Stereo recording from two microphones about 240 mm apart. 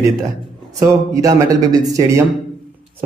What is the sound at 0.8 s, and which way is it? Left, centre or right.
A man's voice, centre.